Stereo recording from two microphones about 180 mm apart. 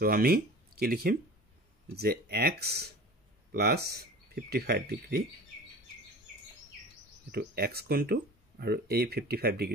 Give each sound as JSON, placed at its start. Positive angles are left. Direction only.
{"t": 0.0, "sound": "speech", "side_deg": -55}
{"t": 7.2, "sound": "speech", "side_deg": -60}